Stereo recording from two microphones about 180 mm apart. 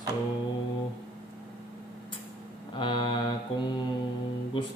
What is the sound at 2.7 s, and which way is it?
Mantra, 25° left (ahead or behind).